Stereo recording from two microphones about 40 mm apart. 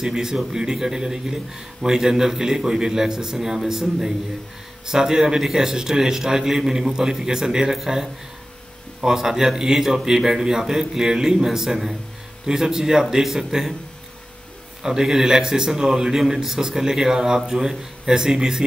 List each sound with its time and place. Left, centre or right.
0.0 s a man's voice: centre
4.8 s a man's voice: centre
14.8 s a man's voice: centre